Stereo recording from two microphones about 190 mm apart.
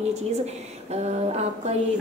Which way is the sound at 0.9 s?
35° right (ahead or behind).